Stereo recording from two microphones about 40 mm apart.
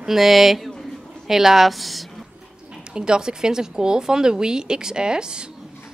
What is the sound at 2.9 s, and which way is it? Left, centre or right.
Speech, right.